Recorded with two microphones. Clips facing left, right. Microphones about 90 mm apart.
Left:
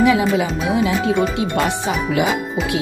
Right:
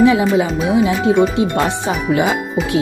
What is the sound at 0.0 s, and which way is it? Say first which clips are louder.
Speech: right 3 dB; 30° right (ahead or behind).